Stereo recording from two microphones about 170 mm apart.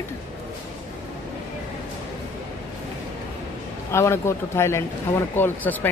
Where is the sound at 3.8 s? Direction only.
15° left (ahead or behind).